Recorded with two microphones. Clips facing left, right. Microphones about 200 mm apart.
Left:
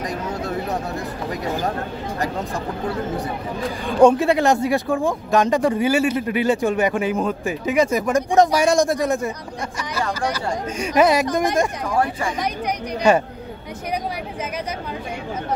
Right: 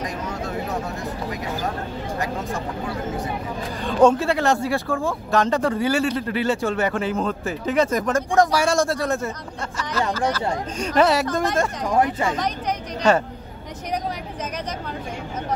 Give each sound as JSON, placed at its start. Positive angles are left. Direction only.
{"t": 2.1, "sound": "speech", "side_deg": 35}
{"t": 3.8, "sound": "speech", "side_deg": 15}
{"t": 11.9, "sound": "speech", "side_deg": -20}
{"t": 13.0, "sound": "speech", "side_deg": 10}